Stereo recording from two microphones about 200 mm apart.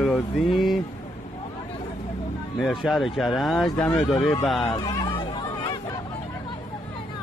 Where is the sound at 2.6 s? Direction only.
Centre (ahead or behind).